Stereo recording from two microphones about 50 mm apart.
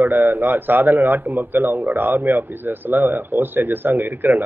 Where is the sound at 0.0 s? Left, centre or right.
Right.